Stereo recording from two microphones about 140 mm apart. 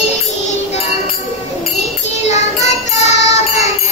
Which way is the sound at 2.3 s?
55° left (ahead or behind).